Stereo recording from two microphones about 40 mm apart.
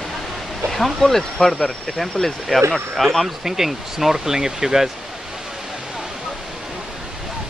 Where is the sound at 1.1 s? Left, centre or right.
Centre.